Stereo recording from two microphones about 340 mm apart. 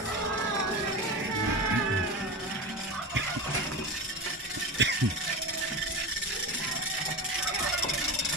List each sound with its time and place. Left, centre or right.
4.8 s rattle: right